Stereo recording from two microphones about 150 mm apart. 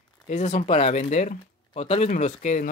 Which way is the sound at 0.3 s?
50° left (ahead or behind).